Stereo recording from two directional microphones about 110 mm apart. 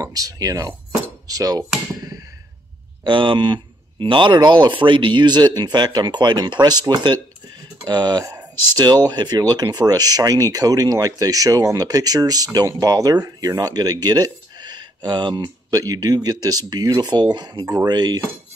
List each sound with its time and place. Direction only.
0.0 s speech: 35° right (ahead or behind)
1.2 s cutlery: 35° right (ahead or behind)
3.0 s speech: 50° right (ahead or behind)